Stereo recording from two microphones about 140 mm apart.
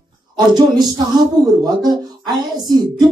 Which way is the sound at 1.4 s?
30° right (ahead or behind).